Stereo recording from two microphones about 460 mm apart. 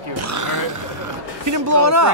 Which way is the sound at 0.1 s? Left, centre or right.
Right.